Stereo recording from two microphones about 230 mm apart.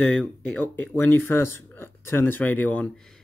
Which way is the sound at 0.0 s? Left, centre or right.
Centre.